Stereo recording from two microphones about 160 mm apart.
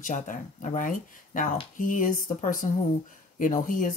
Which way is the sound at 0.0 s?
55° left (ahead or behind).